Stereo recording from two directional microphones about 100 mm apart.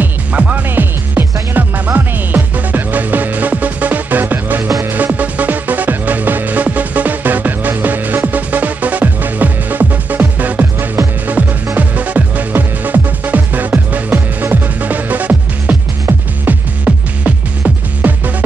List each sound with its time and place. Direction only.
0.0 s music: 15° right (ahead or behind)